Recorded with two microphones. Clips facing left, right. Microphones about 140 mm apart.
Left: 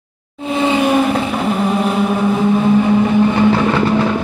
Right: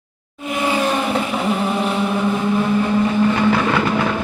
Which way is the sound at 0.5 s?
25° left (ahead or behind).